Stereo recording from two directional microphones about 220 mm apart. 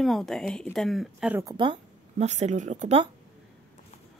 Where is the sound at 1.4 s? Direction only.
20° right (ahead or behind).